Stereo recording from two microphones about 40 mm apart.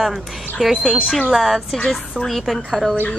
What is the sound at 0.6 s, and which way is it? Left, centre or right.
Speech, centre.